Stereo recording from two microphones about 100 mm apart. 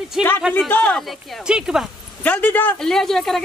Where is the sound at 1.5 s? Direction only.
5° right (ahead or behind).